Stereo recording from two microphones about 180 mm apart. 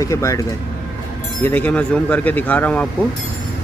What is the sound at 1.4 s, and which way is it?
Speech, 10° left (ahead or behind).